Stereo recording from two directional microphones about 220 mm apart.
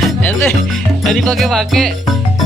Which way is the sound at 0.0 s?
10° left (ahead or behind).